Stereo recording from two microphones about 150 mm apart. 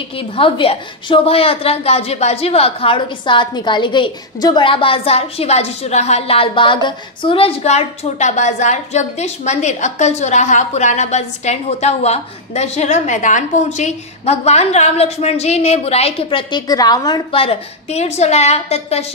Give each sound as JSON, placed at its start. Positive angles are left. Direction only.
{"t": 0.4, "sound": "a woman's voice", "side_deg": 35}
{"t": 17.4, "sound": "a woman's voice", "side_deg": 45}